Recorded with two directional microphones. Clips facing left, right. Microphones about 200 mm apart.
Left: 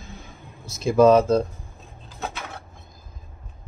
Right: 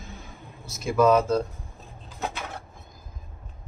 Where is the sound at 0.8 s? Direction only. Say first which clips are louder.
Left 5 dB; 30° left (ahead or behind).